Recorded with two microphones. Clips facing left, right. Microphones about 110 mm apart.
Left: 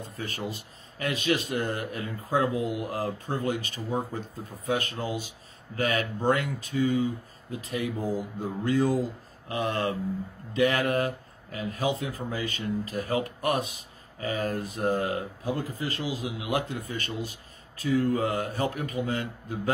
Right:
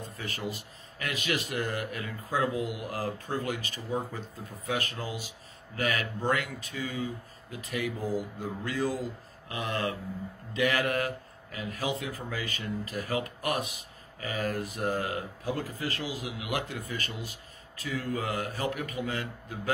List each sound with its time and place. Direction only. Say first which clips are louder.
0.2 s speech: left 2 dB; 30° left (ahead or behind)